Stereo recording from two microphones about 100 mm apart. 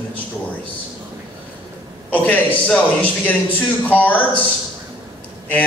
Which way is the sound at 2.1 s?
15° left (ahead or behind).